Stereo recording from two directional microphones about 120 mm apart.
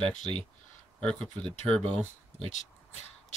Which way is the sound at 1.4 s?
50° right (ahead or behind).